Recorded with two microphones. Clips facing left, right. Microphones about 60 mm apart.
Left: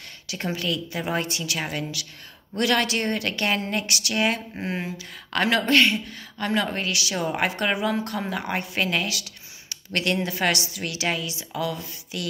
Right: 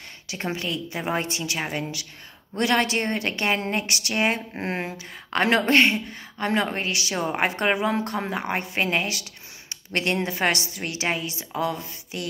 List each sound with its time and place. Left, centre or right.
0.3 s speech: right
4.6 s speech: right
4.9 s speech: right